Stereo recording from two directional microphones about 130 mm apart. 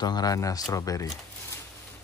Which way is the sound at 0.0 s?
30° left (ahead or behind).